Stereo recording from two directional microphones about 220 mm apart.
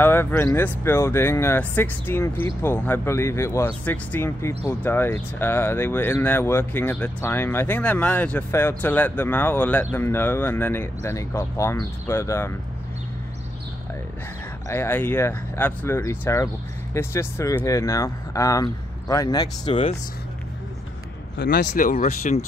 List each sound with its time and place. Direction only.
0.0 s speech: 10° left (ahead or behind)
14.7 s speech: 10° left (ahead or behind)
21.4 s speech: 45° left (ahead or behind)